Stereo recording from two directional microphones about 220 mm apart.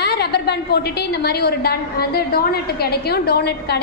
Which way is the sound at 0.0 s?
50° left (ahead or behind).